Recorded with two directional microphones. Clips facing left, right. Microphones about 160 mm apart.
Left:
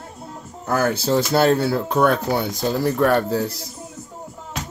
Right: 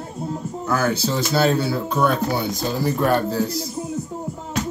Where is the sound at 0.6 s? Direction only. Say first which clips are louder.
Left 1 dB; 50° left (ahead or behind); by 3.1 s 65° left (ahead or behind).